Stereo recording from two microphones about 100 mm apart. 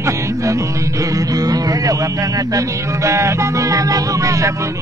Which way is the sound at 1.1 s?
40° right (ahead or behind).